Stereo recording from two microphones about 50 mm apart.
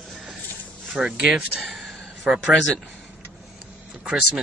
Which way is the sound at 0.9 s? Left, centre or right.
Centre.